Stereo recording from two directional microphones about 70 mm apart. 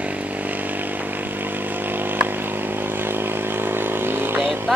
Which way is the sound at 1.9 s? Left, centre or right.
Right.